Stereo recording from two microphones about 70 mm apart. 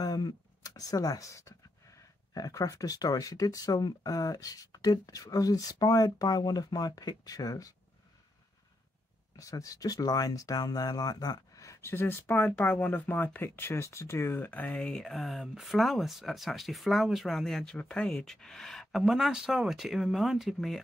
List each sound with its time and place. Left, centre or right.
0.0 s a sound: left
2.3 s speech: left
9.4 s speech: left
11.9 s speech: left
12.4 s speech: centre; by 14.4 s left
14.4 s speech: left; by 20.8 s centre